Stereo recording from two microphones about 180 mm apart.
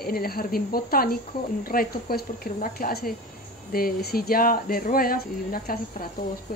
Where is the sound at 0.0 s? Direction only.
55° left (ahead or behind).